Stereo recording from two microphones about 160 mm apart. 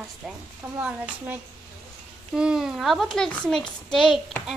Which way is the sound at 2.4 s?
5° right (ahead or behind).